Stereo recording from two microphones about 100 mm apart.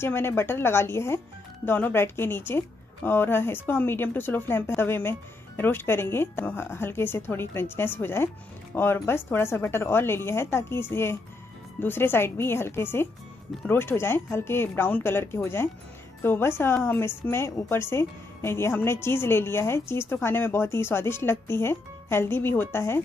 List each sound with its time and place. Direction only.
0.0 s a woman's voice: 25° left (ahead or behind)